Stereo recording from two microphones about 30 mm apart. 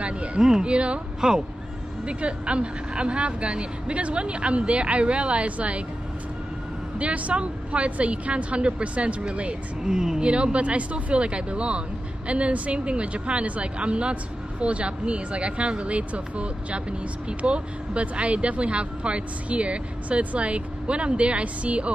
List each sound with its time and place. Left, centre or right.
0.0 s speech: right
0.4 s speech: right
0.7 s speech: right
2.0 s speech: right
7.0 s speech: right
9.8 s speech: right
10.2 s speech: right